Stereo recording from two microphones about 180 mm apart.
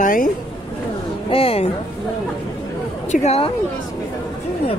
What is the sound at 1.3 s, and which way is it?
Speech, 35° left (ahead or behind).